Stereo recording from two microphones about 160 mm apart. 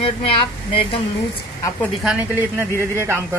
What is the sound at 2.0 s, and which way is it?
A woman's voice, 10° right (ahead or behind).